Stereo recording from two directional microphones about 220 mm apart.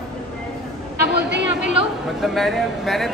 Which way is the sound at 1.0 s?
50° right (ahead or behind).